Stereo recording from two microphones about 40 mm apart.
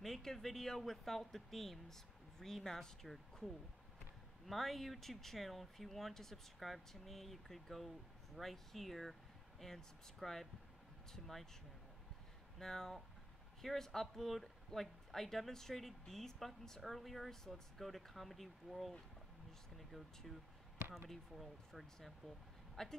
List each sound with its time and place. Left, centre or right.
0.0 s speech: centre
12.5 s speech: centre